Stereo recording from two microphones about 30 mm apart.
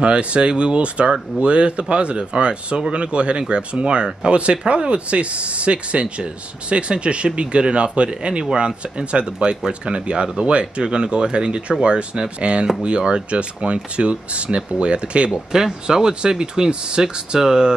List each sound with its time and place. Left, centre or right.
0.0 s speech: right
15.5 s speech: centre